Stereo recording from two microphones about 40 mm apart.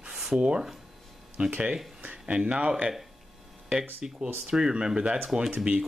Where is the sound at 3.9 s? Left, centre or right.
Right.